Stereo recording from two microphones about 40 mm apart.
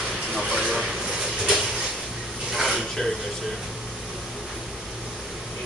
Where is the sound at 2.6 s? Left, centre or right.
Centre.